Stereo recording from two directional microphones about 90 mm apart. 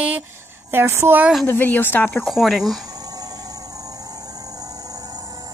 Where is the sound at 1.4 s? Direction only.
20° left (ahead or behind).